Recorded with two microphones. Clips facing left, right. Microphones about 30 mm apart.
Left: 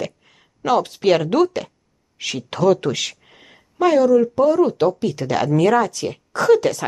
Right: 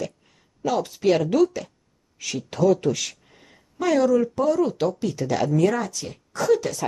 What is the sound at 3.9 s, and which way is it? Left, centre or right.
Speech, centre.